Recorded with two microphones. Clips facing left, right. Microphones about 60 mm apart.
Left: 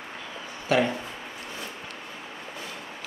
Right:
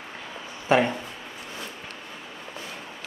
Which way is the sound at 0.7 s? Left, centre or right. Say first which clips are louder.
Right 2 dB; right.